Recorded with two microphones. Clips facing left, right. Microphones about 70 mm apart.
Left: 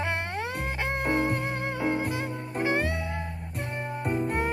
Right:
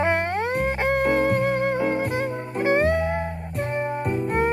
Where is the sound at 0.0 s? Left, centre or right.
Right.